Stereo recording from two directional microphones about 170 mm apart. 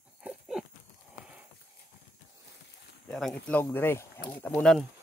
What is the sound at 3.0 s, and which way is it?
Speech, 5° left (ahead or behind).